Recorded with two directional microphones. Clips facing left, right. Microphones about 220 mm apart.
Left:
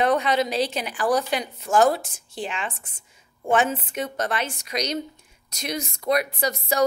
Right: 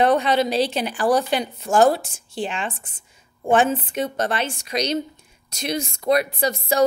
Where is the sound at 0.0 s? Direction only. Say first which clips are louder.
Right 3 dB; 30° right (ahead or behind).